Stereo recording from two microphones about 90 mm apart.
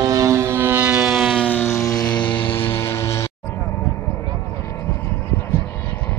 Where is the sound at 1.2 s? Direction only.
5° left (ahead or behind).